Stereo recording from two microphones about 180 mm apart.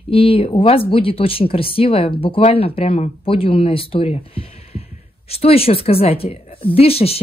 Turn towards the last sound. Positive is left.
turn(degrees=35)  # may be behind; listen again after turning